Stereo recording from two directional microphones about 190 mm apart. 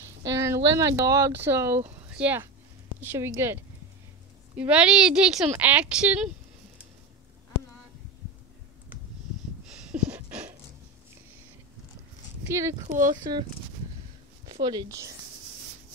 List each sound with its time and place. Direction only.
0.0 s a sound: 15° right (ahead or behind)
0.7 s speech: 15° right (ahead or behind)
9.8 s a sound: 5° right (ahead or behind)
12.4 s speech: 15° right (ahead or behind)
12.8 s speech: 45° right (ahead or behind)
13.1 s speech: 25° right (ahead or behind)